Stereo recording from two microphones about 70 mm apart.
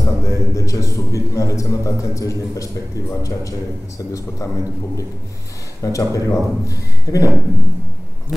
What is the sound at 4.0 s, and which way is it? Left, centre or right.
A man's voice, left.